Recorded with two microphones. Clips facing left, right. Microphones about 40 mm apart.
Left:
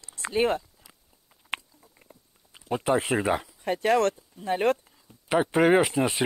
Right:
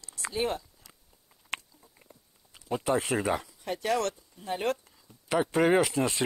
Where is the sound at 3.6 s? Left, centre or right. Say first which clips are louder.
Left 8 dB; left.